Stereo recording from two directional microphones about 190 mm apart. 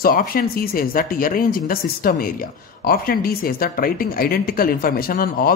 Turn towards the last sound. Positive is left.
turn(degrees=50)  # may be behind; listen again after turning